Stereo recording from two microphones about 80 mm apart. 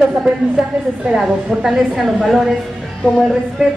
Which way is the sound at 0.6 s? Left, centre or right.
Centre.